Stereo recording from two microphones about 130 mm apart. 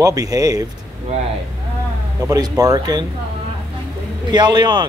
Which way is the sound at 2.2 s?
30° right (ahead or behind).